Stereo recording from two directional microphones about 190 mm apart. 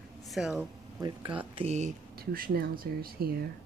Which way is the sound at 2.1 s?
50° right (ahead or behind).